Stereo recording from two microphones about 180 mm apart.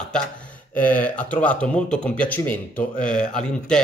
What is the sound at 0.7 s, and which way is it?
Speech, 10° left (ahead or behind).